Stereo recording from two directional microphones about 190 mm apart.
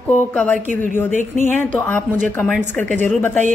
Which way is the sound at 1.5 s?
10° left (ahead or behind).